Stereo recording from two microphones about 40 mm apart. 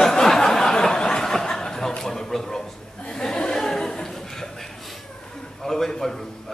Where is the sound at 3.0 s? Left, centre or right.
Left.